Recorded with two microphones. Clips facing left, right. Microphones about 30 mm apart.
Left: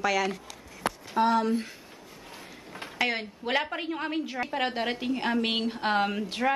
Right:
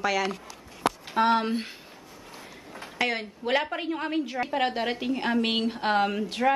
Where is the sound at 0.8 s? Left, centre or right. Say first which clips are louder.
Right 2 dB; right.